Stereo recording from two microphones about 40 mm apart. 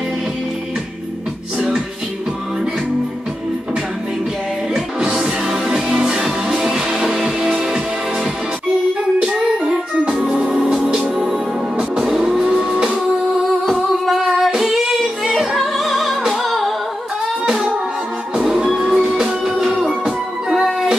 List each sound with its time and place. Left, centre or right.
5.5 s music: centre
9.2 s music: right
10.1 s music: centre
10.4 s music: right
12.2 s vehicle: centre
13.7 s music: centre
18.3 s music: centre
19.4 s music: centre